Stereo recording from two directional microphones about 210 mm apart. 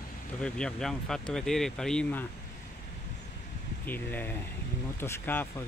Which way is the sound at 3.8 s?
10° left (ahead or behind).